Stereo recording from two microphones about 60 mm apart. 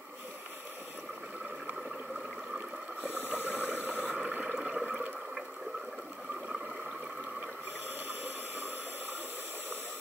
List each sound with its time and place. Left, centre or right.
3.4 s a sound: right
4.6 s toilet flush: centre
8.1 s white noise: right